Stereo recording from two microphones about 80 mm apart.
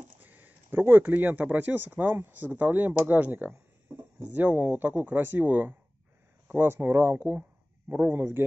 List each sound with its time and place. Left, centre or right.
0.2 s speech: right